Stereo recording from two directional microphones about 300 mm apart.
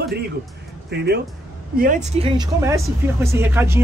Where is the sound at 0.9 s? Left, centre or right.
Right.